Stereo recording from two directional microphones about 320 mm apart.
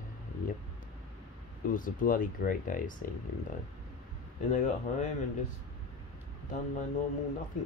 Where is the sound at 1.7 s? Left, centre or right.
Left.